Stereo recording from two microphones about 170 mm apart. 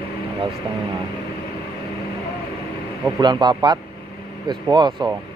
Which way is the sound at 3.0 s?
20° right (ahead or behind).